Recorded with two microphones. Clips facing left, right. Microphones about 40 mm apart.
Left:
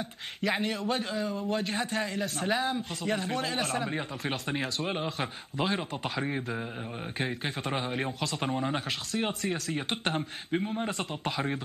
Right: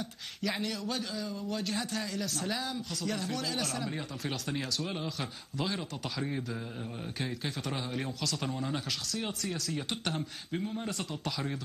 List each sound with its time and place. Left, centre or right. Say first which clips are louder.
0.4 s a man's voice: left 5 dB; left